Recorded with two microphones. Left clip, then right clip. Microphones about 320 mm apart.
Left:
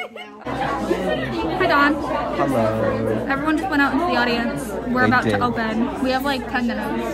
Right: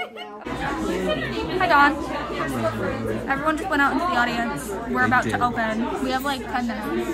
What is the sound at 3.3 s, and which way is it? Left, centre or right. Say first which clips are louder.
A woman's voice: right 2 dB; centre.